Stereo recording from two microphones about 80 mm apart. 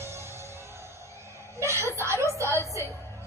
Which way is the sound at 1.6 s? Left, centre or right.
Right.